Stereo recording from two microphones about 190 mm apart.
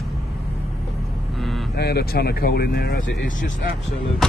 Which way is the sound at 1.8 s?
60° left (ahead or behind).